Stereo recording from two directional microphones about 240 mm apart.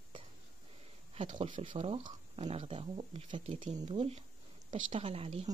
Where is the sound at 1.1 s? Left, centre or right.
Right.